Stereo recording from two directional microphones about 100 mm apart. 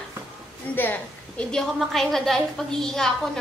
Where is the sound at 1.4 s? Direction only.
5° left (ahead or behind).